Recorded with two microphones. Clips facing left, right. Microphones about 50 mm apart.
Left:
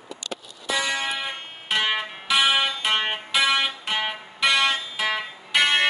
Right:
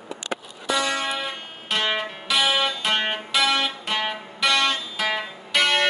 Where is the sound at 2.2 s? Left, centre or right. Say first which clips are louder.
Left 1 dB; left.